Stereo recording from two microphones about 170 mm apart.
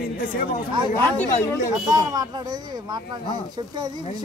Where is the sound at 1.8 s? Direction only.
20° right (ahead or behind).